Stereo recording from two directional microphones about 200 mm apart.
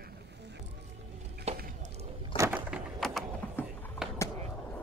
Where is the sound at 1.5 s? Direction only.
30° right (ahead or behind).